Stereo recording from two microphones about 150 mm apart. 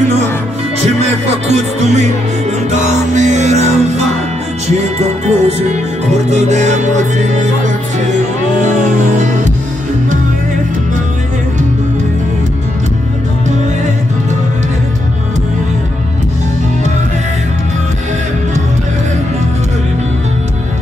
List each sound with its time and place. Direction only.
1.5 s music: 50° right (ahead or behind)
5.0 s music: 50° right (ahead or behind)